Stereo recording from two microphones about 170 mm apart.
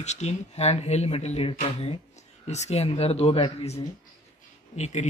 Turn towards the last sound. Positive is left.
turn(degrees=40)  # may be behind; listen again after turning